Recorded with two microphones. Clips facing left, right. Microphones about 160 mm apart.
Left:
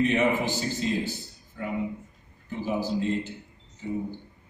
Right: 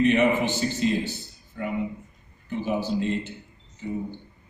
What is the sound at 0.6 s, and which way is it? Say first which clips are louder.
Speech: right 3 dB; 70° right (ahead or behind).